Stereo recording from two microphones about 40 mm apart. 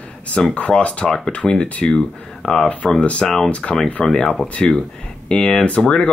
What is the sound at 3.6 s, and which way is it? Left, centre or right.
Speech, centre.